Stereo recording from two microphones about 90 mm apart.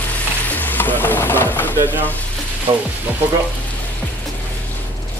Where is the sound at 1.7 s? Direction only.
20° right (ahead or behind).